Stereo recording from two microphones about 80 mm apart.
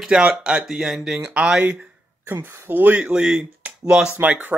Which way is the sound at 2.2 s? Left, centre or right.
Right.